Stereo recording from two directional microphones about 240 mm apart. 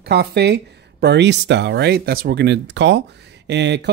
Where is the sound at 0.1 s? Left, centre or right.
Right.